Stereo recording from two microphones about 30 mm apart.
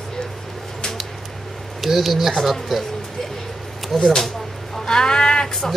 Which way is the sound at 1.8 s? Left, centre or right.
Centre.